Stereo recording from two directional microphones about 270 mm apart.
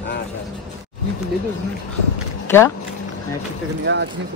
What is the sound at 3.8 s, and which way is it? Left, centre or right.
Speech, right.